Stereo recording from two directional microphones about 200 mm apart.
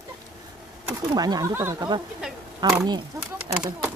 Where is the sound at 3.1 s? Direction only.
10° right (ahead or behind).